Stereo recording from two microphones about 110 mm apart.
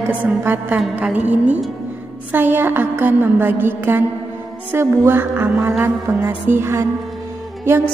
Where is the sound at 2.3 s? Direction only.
15° right (ahead or behind).